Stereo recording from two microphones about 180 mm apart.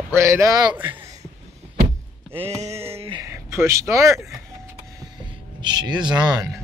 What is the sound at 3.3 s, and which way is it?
Speech, 15° right (ahead or behind).